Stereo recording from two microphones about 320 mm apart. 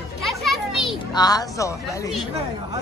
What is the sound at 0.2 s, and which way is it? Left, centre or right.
Children playing, centre.